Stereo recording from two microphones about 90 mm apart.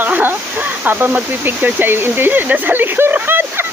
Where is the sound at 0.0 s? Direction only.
20° right (ahead or behind).